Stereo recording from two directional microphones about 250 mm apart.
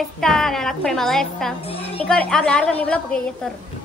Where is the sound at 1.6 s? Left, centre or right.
Left.